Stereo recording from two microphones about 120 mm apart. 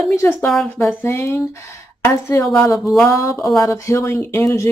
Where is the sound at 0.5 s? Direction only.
5° left (ahead or behind).